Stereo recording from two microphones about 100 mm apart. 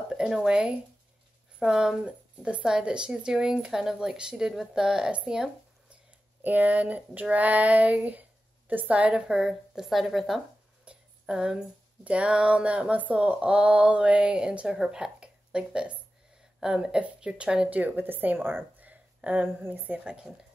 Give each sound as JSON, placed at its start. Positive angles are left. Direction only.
{"t": 0.1, "sound": "a woman's voice", "side_deg": -5}
{"t": 10.9, "sound": "a sound", "side_deg": -10}
{"t": 16.5, "sound": "a woman's voice", "side_deg": -5}
{"t": 20.0, "sound": "speech", "side_deg": -5}